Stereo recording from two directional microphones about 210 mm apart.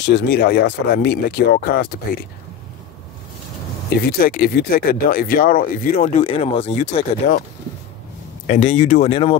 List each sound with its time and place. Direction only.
0.0 s speech: 55° left (ahead or behind)
4.0 s speech: 45° left (ahead or behind)
8.5 s speech: 35° left (ahead or behind)